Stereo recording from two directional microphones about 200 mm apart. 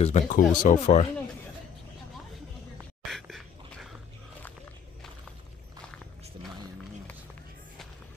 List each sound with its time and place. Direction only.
0.0 s speech: 40° left (ahead or behind)
3.1 s dog: centre (ahead or behind)